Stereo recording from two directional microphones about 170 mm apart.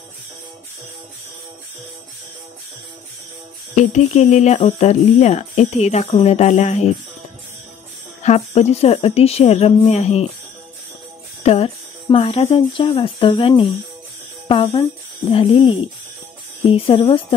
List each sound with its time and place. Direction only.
3.7 s speech: 45° left (ahead or behind)
8.2 s speech: 40° left (ahead or behind)
11.4 s speech: 35° left (ahead or behind)